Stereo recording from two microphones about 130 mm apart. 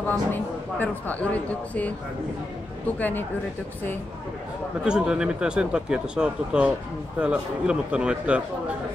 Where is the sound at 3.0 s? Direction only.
15° left (ahead or behind).